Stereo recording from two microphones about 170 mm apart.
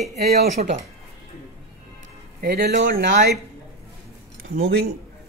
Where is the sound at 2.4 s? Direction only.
70° right (ahead or behind).